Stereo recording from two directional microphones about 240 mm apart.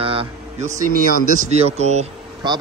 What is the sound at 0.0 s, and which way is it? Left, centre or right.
Vehicle, right.